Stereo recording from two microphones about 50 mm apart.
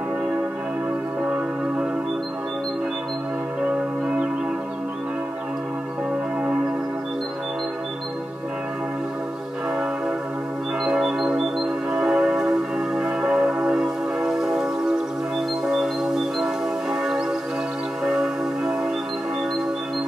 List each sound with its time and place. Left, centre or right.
1.2 s music: right
10.8 s music: centre
11.9 s music: centre
15.7 s music: centre
16.9 s church bell: centre